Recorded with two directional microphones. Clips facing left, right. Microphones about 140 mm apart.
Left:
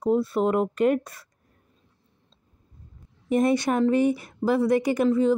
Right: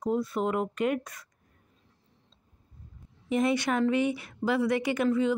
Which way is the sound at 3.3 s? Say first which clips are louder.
Left 4 dB; 45° left (ahead or behind).